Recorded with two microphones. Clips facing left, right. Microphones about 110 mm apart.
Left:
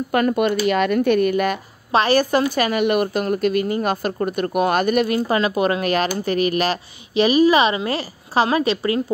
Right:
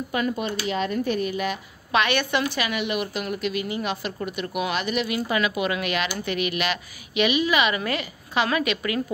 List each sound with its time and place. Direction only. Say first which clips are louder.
0.1 s speech: left 9 dB; 60° left (ahead or behind)
1.9 s a woman's voice: left 6 dB; 35° left (ahead or behind)